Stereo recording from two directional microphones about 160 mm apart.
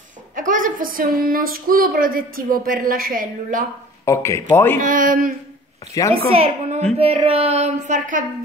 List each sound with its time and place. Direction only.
0.4 s speech: 55° right (ahead or behind)
4.0 s speech: 15° left (ahead or behind)
4.7 s speech: 55° right (ahead or behind)
6.0 s a woman's voice: 20° left (ahead or behind)
6.3 s a sound: 35° right (ahead or behind)